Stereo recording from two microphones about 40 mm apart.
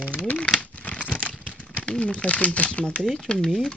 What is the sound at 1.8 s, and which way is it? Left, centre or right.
Speech, left.